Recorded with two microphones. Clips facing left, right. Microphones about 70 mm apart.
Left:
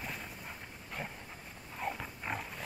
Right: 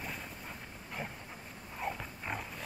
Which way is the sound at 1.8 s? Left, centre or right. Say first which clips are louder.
Even; centre.